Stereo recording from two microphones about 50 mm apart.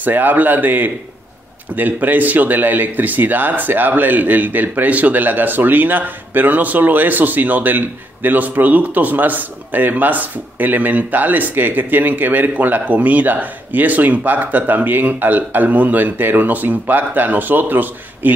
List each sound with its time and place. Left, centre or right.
0.0 s speech: right